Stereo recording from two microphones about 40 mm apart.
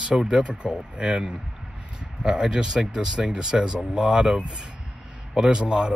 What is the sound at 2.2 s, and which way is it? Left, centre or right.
Speech, centre.